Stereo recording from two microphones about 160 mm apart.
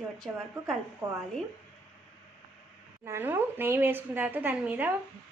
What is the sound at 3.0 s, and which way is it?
Speech, 15° right (ahead or behind).